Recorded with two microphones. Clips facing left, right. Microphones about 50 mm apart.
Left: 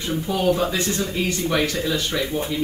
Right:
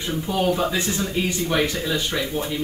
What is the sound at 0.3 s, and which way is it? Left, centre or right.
Speech, centre.